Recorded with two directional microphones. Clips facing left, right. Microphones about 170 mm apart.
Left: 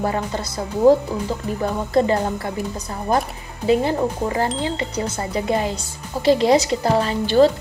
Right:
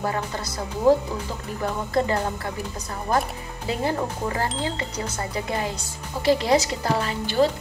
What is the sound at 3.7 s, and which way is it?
A woman's voice, 20° left (ahead or behind).